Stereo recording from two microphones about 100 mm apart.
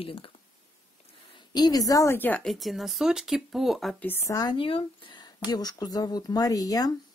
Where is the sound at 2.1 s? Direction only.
20° left (ahead or behind).